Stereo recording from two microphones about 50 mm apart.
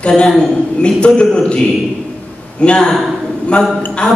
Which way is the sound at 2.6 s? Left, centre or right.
Centre.